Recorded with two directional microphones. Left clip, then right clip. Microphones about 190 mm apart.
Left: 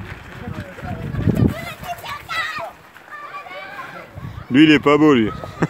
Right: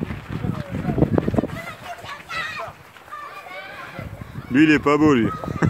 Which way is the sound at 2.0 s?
45° left (ahead or behind).